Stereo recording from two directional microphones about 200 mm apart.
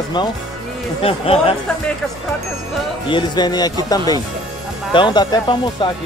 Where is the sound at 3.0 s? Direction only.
25° left (ahead or behind).